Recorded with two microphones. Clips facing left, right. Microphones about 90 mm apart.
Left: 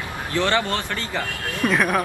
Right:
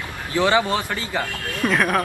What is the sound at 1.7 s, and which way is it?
Speech, centre (ahead or behind).